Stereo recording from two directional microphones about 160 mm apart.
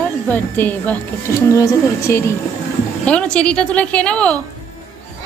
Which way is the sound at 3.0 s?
5° left (ahead or behind).